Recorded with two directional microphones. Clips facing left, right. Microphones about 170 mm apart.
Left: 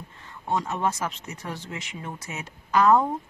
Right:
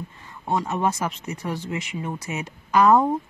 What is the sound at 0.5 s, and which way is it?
Speech, 10° right (ahead or behind).